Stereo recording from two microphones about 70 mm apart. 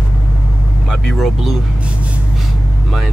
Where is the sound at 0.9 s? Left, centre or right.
Centre.